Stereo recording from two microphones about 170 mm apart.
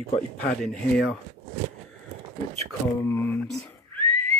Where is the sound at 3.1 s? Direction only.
15° left (ahead or behind).